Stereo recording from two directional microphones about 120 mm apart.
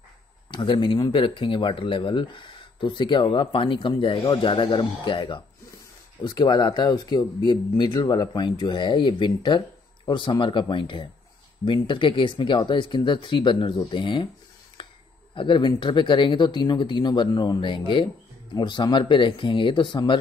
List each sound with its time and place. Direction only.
0.5 s speech: 40° left (ahead or behind)
14.8 s a sound: 40° left (ahead or behind)
15.3 s speech: 45° left (ahead or behind)